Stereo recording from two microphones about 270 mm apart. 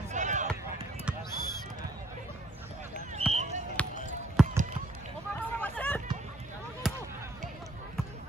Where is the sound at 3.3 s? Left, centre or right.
Right.